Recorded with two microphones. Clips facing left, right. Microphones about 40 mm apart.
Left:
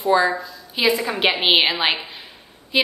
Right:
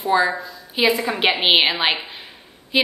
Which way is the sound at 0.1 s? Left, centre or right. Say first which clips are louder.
Even; centre.